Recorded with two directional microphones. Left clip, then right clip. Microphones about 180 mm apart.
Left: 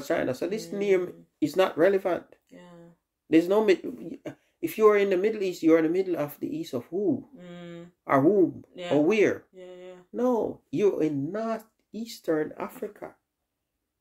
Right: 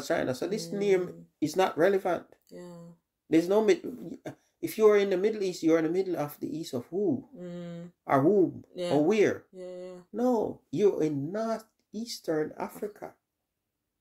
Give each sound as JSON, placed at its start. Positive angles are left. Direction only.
{"t": 0.1, "sound": "speech", "side_deg": 0}
{"t": 2.5, "sound": "speech", "side_deg": -65}
{"t": 3.3, "sound": "speech", "side_deg": 0}
{"t": 7.3, "sound": "speech", "side_deg": -60}
{"t": 8.0, "sound": "speech", "side_deg": 0}
{"t": 9.6, "sound": "speech", "side_deg": -60}
{"t": 10.1, "sound": "speech", "side_deg": 0}